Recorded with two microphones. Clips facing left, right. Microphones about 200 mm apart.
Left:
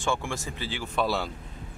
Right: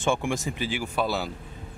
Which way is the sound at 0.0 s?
20° right (ahead or behind).